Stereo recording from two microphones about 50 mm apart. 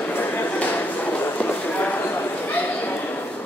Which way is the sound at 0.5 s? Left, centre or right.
Left.